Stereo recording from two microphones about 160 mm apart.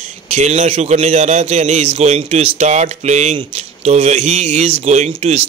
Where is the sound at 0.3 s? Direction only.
45° right (ahead or behind).